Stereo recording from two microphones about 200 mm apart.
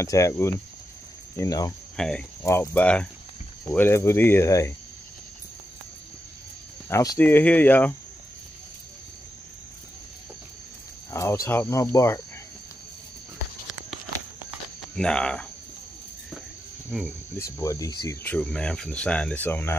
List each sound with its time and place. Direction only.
0.0 s speech: 15° left (ahead or behind)
2.0 s cricket: 5° left (ahead or behind)
2.4 s speech: 15° left (ahead or behind)
6.9 s speech: 15° left (ahead or behind)
11.1 s speech: 15° left (ahead or behind)
15.0 s speech: 5° left (ahead or behind)
16.9 s speech: centre (ahead or behind)
17.4 s speech: 15° left (ahead or behind)